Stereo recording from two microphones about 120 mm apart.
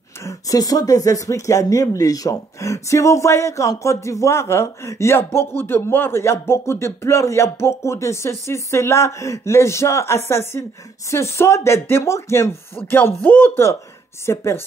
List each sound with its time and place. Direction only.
0.2 s speech: 25° left (ahead or behind)